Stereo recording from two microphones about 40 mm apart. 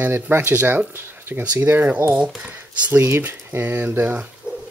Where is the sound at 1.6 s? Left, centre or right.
Right.